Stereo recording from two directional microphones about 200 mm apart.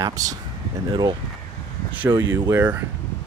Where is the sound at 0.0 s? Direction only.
15° right (ahead or behind).